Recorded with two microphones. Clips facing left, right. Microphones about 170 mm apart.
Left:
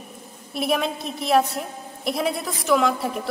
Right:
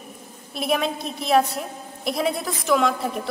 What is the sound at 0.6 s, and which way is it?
A woman's voice, centre (ahead or behind).